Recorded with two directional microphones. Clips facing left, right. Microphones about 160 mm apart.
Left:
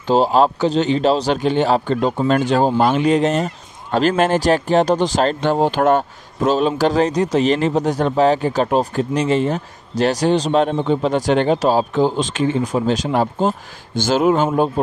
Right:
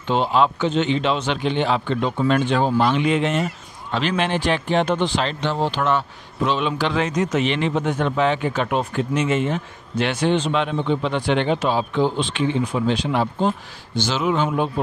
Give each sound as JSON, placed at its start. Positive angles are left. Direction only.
{"t": 0.0, "sound": "speech", "side_deg": 40}